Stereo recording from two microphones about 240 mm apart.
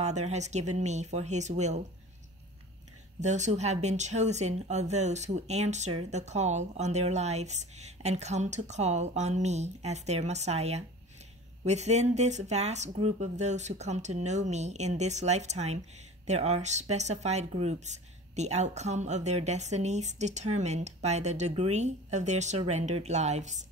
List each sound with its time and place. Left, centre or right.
0.0 s speech: right
3.2 s speech: right